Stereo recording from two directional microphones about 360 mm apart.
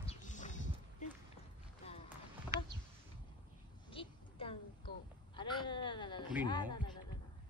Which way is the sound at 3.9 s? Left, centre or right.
Centre.